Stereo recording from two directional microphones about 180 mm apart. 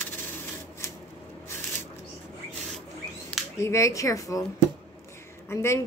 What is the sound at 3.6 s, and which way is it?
Speech, 15° left (ahead or behind).